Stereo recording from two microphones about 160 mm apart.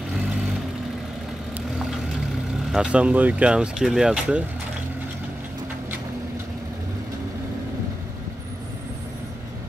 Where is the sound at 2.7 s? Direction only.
5° right (ahead or behind).